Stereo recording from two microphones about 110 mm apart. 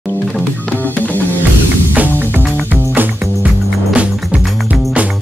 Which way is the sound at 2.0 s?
15° right (ahead or behind).